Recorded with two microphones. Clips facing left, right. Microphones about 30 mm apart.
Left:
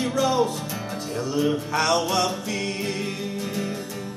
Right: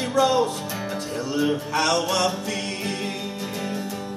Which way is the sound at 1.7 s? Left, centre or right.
Centre.